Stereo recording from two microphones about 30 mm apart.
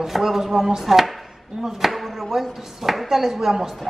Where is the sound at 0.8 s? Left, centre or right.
Centre.